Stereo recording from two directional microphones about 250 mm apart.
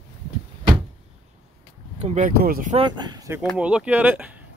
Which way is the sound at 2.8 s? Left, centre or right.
Centre.